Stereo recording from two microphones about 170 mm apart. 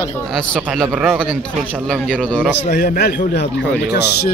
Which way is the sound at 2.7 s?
65° left (ahead or behind).